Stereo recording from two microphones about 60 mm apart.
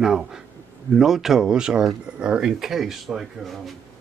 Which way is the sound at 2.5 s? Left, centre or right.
Centre.